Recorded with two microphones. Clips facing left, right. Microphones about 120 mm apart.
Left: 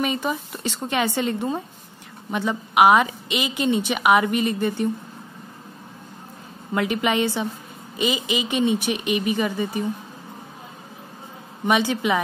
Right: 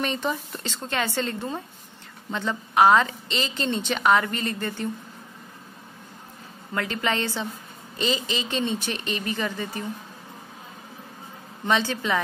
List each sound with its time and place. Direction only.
0.0 s a woman's voice: 10° left (ahead or behind)
6.7 s a woman's voice: 15° left (ahead or behind)
11.6 s a woman's voice: 15° left (ahead or behind)